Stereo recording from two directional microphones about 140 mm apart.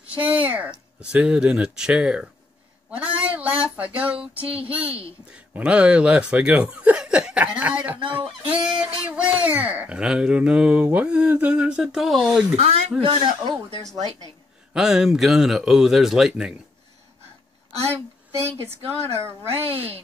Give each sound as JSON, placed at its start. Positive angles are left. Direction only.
{"t": 0.2, "sound": "speech", "side_deg": -10}
{"t": 3.0, "sound": "a sound", "side_deg": -10}
{"t": 3.7, "sound": "speech", "side_deg": -10}
{"t": 4.4, "sound": "speech", "side_deg": -40}
{"t": 5.3, "sound": "speech", "side_deg": -10}
{"t": 12.5, "sound": "speech", "side_deg": -45}
{"t": 13.0, "sound": "speech", "side_deg": -35}
{"t": 14.7, "sound": "a man's voice", "side_deg": -5}
{"t": 17.7, "sound": "a woman's voice", "side_deg": -45}
{"t": 18.4, "sound": "speech", "side_deg": -20}